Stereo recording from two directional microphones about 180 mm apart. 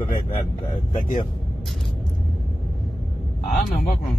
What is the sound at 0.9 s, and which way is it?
Speech, 45° left (ahead or behind).